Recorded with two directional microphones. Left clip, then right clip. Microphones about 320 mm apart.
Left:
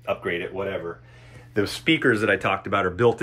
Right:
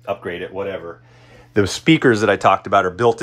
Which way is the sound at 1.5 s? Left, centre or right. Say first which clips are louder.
Right 6 dB; right.